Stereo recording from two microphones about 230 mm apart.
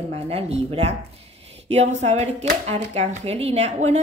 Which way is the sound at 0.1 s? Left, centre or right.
Right.